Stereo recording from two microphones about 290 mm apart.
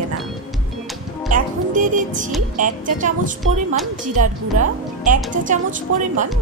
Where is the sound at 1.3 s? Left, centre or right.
Right.